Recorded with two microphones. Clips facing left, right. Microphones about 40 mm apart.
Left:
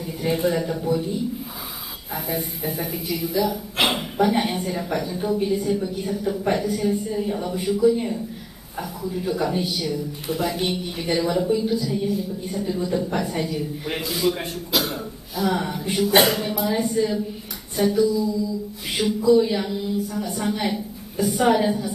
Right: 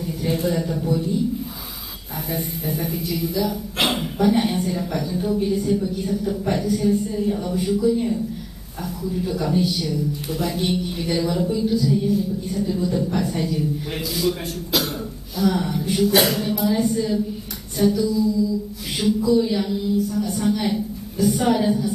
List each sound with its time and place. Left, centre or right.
0.0 s a man's voice: centre
2.2 s speech: centre; by 14.5 s left
14.7 s throat clearing: centre
15.5 s speech: centre